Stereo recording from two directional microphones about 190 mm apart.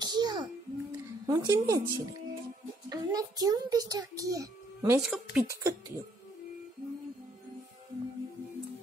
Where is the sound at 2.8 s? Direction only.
20° right (ahead or behind).